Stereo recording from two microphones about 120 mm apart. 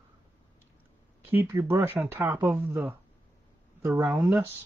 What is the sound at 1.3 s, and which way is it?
Speech, 20° right (ahead or behind).